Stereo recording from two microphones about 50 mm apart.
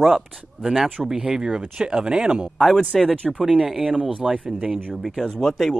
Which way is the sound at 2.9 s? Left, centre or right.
Centre.